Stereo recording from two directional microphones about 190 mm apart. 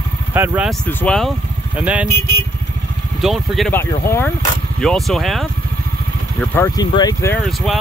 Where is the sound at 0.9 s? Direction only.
10° left (ahead or behind).